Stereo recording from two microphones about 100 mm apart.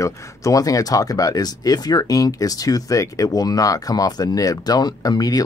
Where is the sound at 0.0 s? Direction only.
30° left (ahead or behind).